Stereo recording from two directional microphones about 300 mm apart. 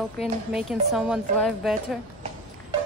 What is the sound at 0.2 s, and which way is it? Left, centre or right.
Speech, centre.